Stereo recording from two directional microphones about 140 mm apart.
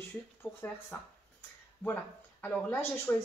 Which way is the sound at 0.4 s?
15° left (ahead or behind).